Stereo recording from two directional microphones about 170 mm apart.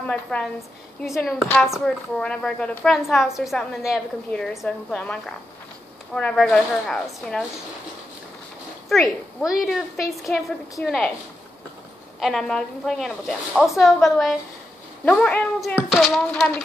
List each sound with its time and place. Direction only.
0.1 s a woman's voice: 5° left (ahead or behind)
8.8 s a woman's voice: centre (ahead or behind)
12.2 s a woman's voice: centre (ahead or behind)